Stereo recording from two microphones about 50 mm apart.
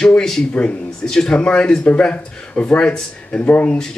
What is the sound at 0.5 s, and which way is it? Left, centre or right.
Speech, left.